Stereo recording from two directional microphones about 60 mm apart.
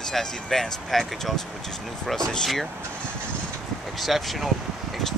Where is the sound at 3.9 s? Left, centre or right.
Centre.